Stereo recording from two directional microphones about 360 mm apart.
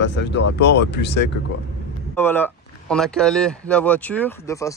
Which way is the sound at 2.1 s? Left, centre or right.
Centre.